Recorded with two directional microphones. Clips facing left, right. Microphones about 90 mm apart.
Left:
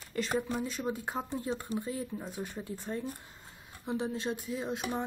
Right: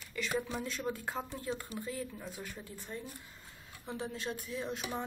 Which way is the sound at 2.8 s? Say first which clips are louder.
Left 7 dB; 35° left (ahead or behind).